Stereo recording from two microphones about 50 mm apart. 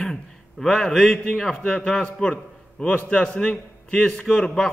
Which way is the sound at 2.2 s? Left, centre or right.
Centre.